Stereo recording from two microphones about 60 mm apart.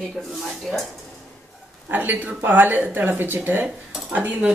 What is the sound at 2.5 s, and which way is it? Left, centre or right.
Dishes, right.